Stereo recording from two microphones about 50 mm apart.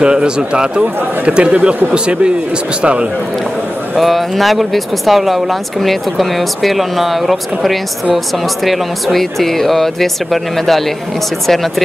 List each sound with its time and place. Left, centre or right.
0.0 s speech: centre
2.8 s speech: right
3.9 s speech: centre